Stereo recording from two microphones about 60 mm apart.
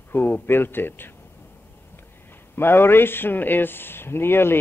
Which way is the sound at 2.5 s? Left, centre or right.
Left.